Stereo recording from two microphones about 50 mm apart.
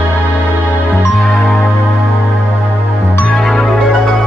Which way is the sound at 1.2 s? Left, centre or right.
Centre.